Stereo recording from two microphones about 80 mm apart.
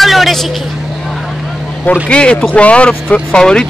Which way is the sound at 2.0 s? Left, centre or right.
Centre.